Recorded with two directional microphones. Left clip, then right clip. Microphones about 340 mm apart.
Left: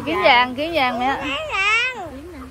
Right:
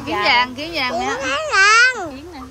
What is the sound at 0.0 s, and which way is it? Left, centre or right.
A woman's voice, centre.